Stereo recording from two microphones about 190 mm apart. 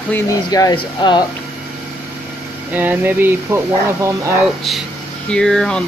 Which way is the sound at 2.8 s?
10° right (ahead or behind).